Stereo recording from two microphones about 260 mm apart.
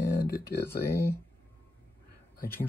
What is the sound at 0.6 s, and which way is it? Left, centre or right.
Speech, centre.